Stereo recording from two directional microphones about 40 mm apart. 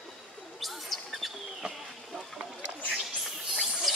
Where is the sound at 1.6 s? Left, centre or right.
Right.